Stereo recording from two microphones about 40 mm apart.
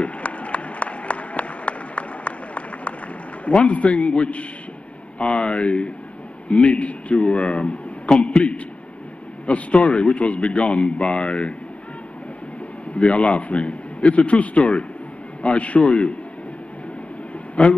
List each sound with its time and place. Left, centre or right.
0.0 s a sound: left
3.4 s a man's voice: left
12.9 s a man's voice: left
17.6 s a man's voice: left